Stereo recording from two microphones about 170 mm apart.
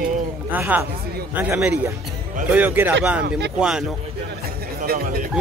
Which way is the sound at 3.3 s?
90° right.